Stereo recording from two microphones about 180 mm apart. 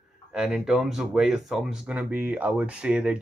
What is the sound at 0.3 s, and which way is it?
Speech, centre (ahead or behind).